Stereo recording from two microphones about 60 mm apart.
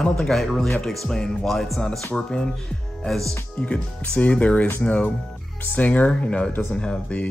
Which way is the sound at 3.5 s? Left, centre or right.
Left.